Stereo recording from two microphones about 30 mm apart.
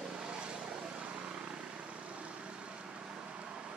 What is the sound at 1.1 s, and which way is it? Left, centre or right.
Vehicle, right.